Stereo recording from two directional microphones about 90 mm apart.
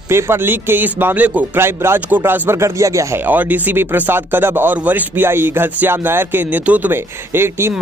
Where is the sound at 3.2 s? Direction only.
20° right (ahead or behind).